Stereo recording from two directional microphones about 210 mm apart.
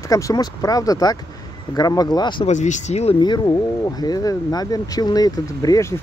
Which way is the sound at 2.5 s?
35° left (ahead or behind).